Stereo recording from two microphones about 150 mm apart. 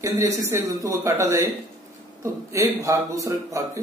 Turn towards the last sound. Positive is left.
turn(degrees=-20)  # may be behind; listen again after turning